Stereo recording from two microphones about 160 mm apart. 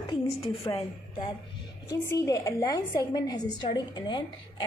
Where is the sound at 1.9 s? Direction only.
20° left (ahead or behind).